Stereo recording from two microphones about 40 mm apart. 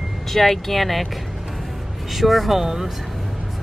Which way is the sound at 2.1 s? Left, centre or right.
Centre.